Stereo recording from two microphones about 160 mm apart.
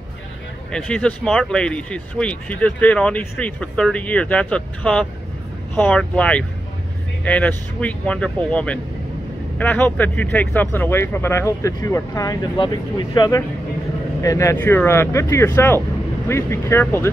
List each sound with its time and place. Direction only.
0.7 s speech: 5° left (ahead or behind)